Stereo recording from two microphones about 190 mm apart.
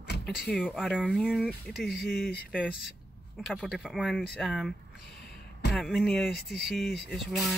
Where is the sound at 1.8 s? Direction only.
55° left (ahead or behind).